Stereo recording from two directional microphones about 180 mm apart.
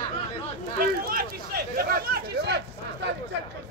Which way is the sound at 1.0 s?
55° right (ahead or behind).